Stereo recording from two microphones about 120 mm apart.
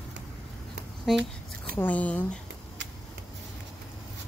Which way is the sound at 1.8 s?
10° left (ahead or behind).